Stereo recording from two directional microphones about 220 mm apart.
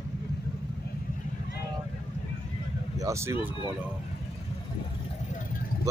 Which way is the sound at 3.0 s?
15° right (ahead or behind).